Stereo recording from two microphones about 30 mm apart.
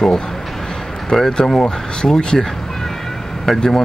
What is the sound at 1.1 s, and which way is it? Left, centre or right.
Speech, left.